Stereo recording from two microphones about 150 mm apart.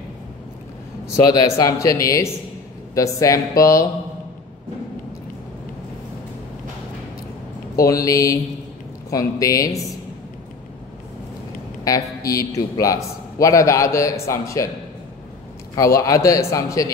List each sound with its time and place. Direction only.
1.1 s a man's voice: 25° left (ahead or behind)
7.8 s a man's voice: 20° left (ahead or behind)
11.8 s a man's voice: 25° left (ahead or behind)
16.0 s a man's voice: 20° left (ahead or behind)